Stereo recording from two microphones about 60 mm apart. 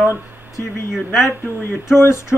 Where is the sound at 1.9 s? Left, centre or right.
Left.